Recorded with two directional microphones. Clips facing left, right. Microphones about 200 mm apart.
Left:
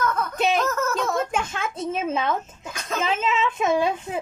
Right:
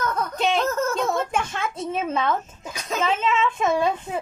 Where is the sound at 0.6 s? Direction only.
30° right (ahead or behind).